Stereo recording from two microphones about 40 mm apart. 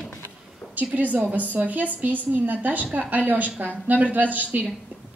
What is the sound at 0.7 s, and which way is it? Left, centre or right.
A woman's voice, right.